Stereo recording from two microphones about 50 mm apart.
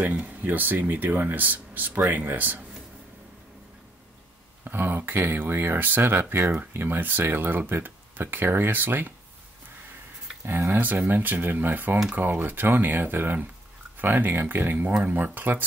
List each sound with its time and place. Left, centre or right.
0.1 s speech: right
4.6 s speech: right
10.7 s speech: right